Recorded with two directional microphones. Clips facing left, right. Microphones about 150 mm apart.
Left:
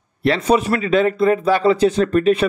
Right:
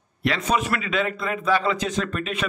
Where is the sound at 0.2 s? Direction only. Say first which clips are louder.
Left 7 dB; 35° left (ahead or behind).